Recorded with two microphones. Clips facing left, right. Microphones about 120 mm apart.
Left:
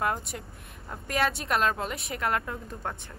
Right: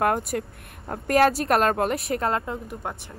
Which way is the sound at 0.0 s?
60° right (ahead or behind).